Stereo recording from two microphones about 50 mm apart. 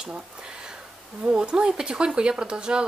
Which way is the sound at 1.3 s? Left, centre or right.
Centre.